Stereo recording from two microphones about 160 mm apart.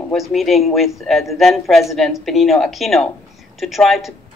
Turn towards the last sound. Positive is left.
turn(degrees=0)  # may be behind; listen again after turning